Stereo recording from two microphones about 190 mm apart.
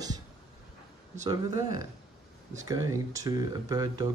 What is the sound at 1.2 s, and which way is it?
Speech, 20° right (ahead or behind).